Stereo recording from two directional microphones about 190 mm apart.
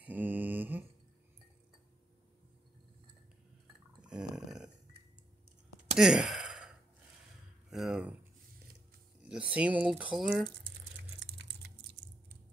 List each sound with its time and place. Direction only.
0.0 s mantra: 10° right (ahead or behind)
4.0 s burping: 5° right (ahead or behind)
5.9 s sigh: 5° right (ahead or behind)
7.7 s a sound: centre (ahead or behind)
9.3 s speech: 5° right (ahead or behind)
11.1 s typing: 65° right (ahead or behind)